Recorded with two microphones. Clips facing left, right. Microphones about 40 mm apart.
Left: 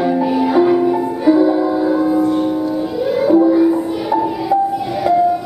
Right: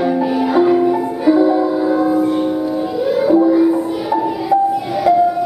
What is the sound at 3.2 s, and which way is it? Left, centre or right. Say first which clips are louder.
Music: left 1 dB; centre.